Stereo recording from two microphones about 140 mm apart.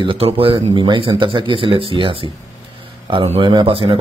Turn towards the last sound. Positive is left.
turn(degrees=-40)  # may be behind; listen again after turning